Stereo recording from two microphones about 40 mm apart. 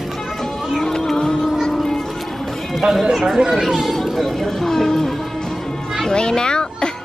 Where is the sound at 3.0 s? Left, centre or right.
Centre.